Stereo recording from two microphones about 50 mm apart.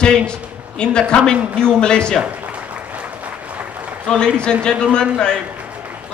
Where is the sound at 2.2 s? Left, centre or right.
Right.